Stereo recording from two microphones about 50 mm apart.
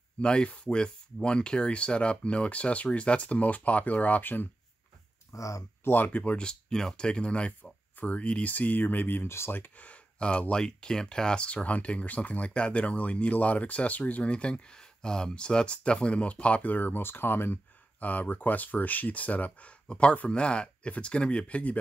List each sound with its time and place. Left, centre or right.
0.2 s speech: left
5.3 s speech: left
5.9 s speech: left
6.4 s speech: centre; by 9.3 s left
9.8 s a sound: left
10.5 s speech: centre; by 17.6 s left
18.0 s speech: left